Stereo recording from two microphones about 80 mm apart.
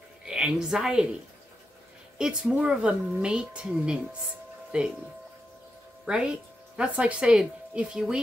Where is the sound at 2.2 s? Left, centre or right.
Centre.